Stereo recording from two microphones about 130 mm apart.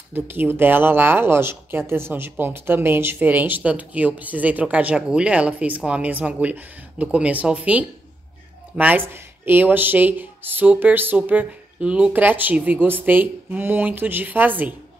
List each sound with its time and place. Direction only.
0.1 s speech: 15° right (ahead or behind)